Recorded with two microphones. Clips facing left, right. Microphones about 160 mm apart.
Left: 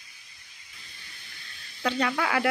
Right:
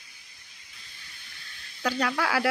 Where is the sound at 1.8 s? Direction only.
Centre (ahead or behind).